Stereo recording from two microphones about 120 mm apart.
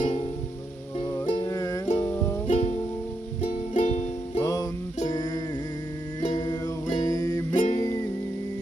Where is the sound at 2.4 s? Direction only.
75° left (ahead or behind).